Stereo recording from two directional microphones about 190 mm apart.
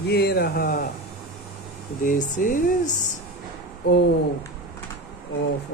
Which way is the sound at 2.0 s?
45° left (ahead or behind).